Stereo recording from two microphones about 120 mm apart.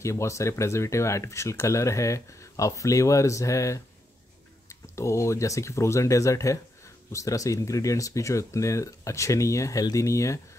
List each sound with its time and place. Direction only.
0.0 s speech: 25° left (ahead or behind)